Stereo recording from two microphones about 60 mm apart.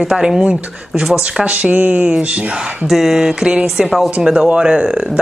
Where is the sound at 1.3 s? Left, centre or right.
Centre.